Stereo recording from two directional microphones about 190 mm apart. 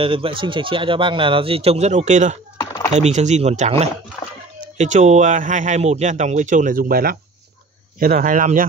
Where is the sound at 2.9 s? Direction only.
35° right (ahead or behind).